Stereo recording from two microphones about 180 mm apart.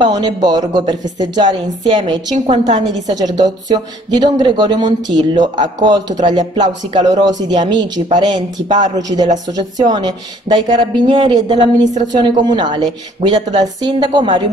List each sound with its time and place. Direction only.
0.0 s speech: 25° right (ahead or behind)
2.3 s a woman's voice: 40° right (ahead or behind)
3.1 s speech: 20° right (ahead or behind)